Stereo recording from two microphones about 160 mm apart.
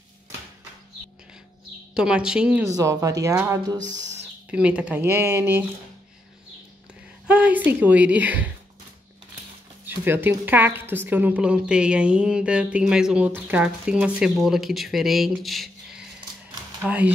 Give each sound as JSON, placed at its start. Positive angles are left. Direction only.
{"t": 2.0, "sound": "a woman's voice", "side_deg": -5}
{"t": 2.6, "sound": "speech", "side_deg": -20}
{"t": 4.5, "sound": "a woman's voice", "side_deg": -5}
{"t": 7.2, "sound": "a woman's voice", "side_deg": -10}
{"t": 9.8, "sound": "a woman's voice", "side_deg": -15}